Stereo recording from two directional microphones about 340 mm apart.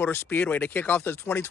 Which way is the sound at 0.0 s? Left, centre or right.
Centre.